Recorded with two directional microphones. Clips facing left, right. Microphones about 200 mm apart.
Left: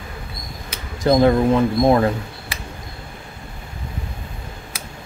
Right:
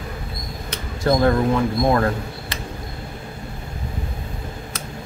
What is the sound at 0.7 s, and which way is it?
Speech, 15° left (ahead or behind).